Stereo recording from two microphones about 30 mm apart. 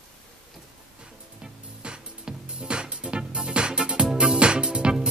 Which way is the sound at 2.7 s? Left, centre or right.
Right.